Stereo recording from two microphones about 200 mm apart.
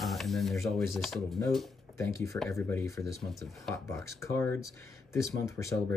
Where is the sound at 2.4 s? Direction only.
15° left (ahead or behind).